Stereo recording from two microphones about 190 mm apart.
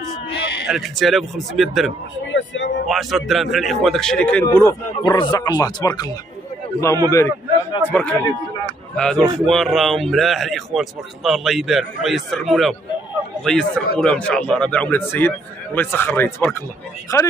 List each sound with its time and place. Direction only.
0.7 s a man's voice: centre (ahead or behind)
2.3 s a sound: 75° left (ahead or behind)
2.9 s a man's voice: centre (ahead or behind)
5.0 s a man's voice: 25° left (ahead or behind)